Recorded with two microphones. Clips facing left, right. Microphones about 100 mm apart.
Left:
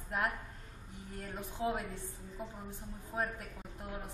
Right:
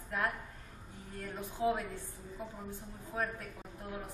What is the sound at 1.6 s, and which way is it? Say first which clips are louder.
Speech: right 3 dB; 25° right (ahead or behind).